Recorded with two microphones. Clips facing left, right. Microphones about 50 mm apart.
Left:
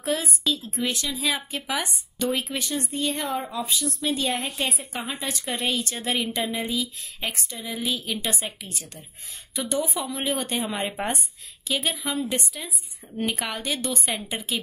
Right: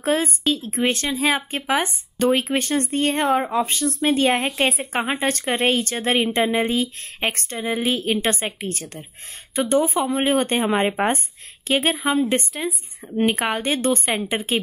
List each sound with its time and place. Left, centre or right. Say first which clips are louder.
0.0 s speech: right 6 dB; right
4.0 s speech: right 9 dB; right
5.1 s speech: right 7 dB; right